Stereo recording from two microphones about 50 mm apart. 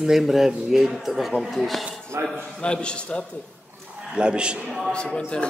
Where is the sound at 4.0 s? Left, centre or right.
Centre.